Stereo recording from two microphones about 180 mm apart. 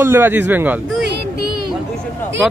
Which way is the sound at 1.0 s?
60° right (ahead or behind).